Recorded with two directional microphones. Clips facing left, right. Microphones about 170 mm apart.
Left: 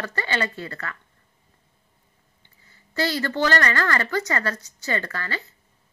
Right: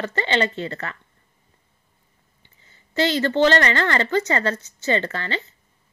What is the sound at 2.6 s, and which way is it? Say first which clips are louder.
A woman's voice: right 4 dB; 20° right (ahead or behind).